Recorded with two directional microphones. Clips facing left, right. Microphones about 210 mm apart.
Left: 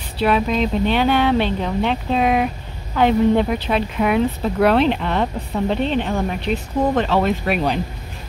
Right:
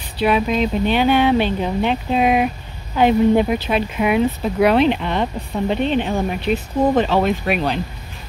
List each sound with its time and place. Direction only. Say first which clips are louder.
0.2 s speech: right 1 dB; 5° right (ahead or behind)